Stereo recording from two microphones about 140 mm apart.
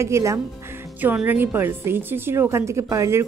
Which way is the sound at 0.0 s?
20° right (ahead or behind).